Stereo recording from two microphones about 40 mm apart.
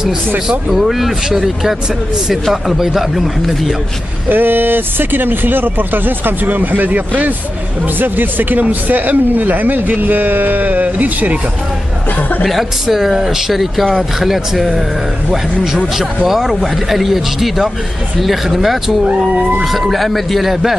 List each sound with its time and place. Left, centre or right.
0.7 s a man's voice: centre
4.3 s a man's voice: right
12.8 s speech: centre
16.0 s a man's voice: centre